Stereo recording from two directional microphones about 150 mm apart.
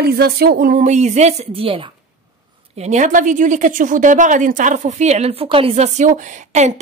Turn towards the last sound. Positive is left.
turn(degrees=-55)  # may be behind; listen again after turning